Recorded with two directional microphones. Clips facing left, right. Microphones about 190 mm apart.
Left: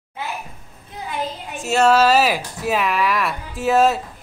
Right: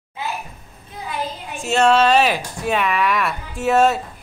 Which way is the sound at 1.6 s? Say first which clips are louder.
Even; 5° left (ahead or behind).